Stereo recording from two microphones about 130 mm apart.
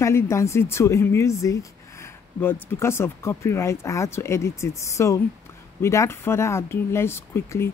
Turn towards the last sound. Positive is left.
turn(degrees=20)  # may be behind; listen again after turning